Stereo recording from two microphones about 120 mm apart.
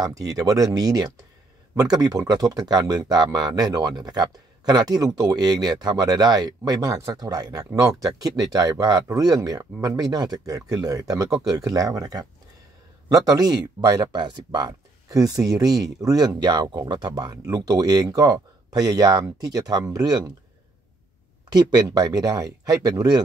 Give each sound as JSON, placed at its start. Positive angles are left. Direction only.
{"t": 0.0, "sound": "speech", "side_deg": -30}
{"t": 21.5, "sound": "speech", "side_deg": -35}